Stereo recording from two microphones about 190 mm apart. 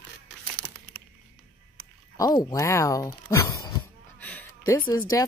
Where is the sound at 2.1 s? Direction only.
20° left (ahead or behind).